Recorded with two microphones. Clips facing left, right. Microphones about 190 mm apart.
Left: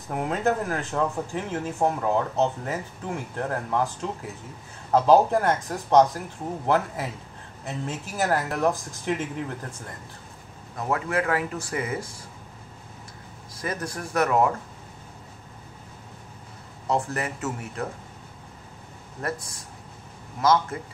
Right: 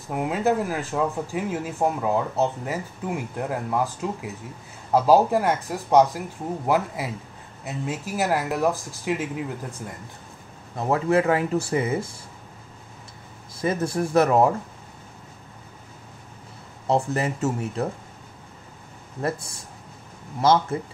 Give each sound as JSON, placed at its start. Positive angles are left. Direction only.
{"t": 0.1, "sound": "speech", "side_deg": -5}
{"t": 10.8, "sound": "speech", "side_deg": -25}
{"t": 13.6, "sound": "speech", "side_deg": -25}
{"t": 16.8, "sound": "speech", "side_deg": -25}
{"t": 20.3, "sound": "speech", "side_deg": -30}